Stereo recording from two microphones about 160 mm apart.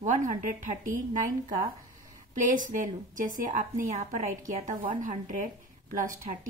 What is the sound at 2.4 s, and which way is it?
Speech, 55° right (ahead or behind).